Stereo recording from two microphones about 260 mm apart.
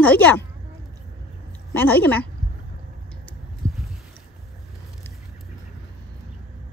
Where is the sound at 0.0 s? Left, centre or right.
Centre.